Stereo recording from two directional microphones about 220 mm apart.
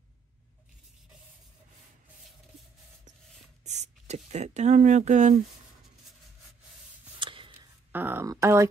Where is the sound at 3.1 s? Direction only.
35° right (ahead or behind).